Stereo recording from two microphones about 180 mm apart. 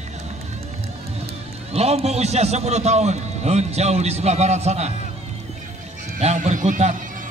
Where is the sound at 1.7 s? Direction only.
35° right (ahead or behind).